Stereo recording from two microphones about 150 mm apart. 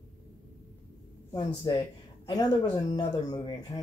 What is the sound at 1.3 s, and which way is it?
Speech, 25° left (ahead or behind).